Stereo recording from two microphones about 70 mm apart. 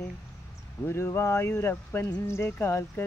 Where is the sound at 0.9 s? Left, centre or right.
Left.